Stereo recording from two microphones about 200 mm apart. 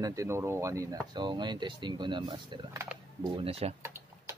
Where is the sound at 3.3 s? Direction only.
30° right (ahead or behind).